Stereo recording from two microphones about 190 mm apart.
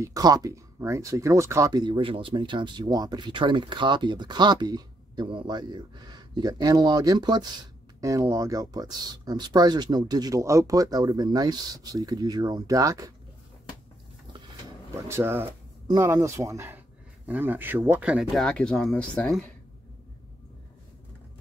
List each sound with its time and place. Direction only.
0.0 s speech: 20° right (ahead or behind)
15.0 s speech: 15° right (ahead or behind); by 19.5 s 5° left (ahead or behind)